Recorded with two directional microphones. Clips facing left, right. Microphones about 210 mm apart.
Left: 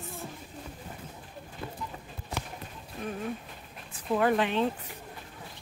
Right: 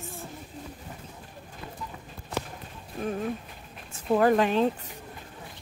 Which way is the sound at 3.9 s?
40° right (ahead or behind).